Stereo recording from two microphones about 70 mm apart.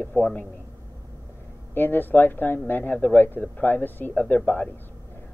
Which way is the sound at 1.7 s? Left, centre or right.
Left.